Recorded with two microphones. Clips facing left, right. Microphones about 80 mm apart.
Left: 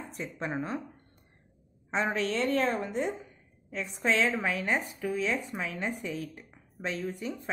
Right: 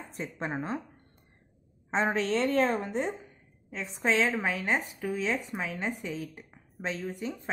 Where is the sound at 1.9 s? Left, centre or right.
Right.